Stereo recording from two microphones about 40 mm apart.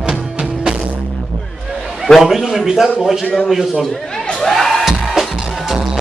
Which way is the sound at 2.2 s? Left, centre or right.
Centre.